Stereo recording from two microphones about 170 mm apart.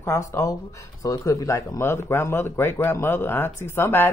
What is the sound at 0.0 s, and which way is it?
Speech, 15° left (ahead or behind).